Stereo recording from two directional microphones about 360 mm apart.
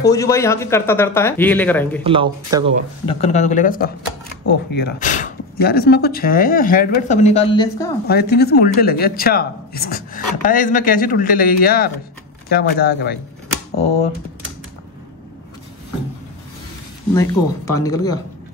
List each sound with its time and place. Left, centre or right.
0.1 s speech: centre
2.0 s speech: centre
3.1 s speech: centre
8.1 s speech: left
17.1 s speech: centre